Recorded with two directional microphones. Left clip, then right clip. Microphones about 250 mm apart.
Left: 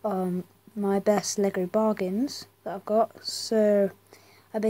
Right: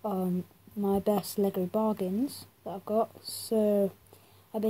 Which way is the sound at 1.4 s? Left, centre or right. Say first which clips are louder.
Left 3 dB; centre.